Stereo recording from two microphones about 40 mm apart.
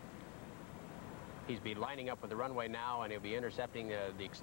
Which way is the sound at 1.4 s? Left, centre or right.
Centre.